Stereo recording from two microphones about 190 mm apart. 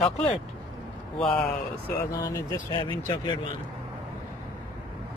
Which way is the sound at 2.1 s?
15° left (ahead or behind).